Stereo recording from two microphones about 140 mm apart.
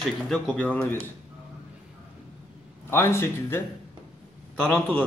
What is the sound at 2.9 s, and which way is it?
A man's voice, 15° left (ahead or behind).